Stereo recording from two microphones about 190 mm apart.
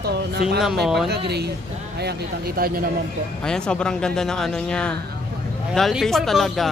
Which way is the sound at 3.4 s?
5° left (ahead or behind).